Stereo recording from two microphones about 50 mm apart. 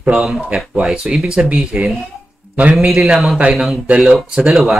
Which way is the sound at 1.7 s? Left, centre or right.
Centre.